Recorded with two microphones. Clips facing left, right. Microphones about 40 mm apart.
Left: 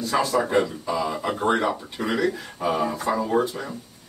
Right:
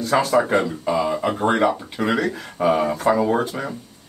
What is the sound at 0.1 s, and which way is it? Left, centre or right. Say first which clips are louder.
Speech: right 4 dB; right.